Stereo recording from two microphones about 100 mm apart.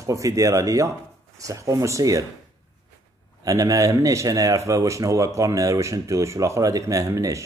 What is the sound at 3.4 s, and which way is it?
Speech, 35° right (ahead or behind).